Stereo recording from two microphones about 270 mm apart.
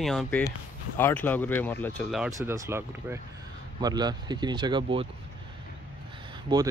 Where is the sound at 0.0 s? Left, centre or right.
Centre.